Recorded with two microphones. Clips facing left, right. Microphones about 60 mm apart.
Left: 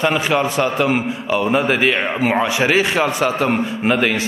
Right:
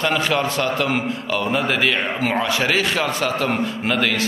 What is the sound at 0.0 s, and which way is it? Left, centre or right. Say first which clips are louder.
A man's voice: left 3 dB; centre.